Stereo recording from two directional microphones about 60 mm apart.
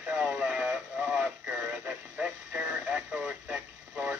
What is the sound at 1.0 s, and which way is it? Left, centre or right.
Synthetic singing, centre.